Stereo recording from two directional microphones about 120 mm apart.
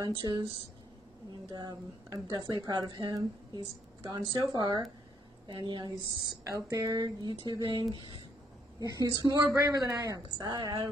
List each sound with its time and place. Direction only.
0.0 s a woman's voice: 40° right (ahead or behind)
1.5 s a woman's voice: 35° right (ahead or behind)
6.4 s a woman's voice: 25° right (ahead or behind); by 8.2 s 45° right (ahead or behind)
8.7 s a woman's voice: 30° right (ahead or behind)